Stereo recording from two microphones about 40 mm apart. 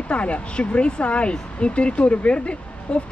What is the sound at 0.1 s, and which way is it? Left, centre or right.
Speech, left.